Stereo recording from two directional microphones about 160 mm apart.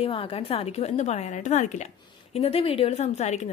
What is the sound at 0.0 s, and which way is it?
A woman's voice, 35° left (ahead or behind).